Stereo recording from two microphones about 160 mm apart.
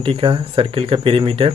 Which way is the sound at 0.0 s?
35° right (ahead or behind).